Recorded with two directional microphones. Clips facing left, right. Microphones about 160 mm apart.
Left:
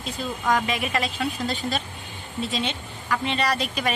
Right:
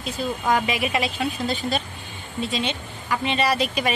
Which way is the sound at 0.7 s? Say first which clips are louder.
Right 2 dB; 10° right (ahead or behind).